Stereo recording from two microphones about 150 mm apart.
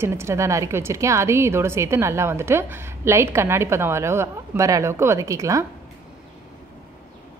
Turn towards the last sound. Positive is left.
turn(degrees=-20)  # may be behind; listen again after turning